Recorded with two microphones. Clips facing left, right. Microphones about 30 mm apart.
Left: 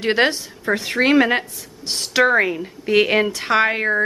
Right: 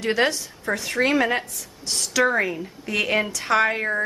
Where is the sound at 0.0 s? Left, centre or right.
Left.